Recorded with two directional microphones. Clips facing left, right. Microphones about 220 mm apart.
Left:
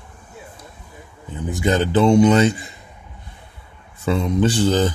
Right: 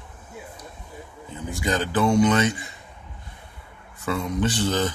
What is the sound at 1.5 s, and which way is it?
A man's voice, 25° left (ahead or behind).